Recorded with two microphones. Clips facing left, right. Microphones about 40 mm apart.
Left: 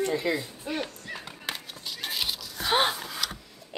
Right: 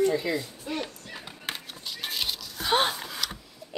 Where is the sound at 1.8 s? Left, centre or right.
Centre.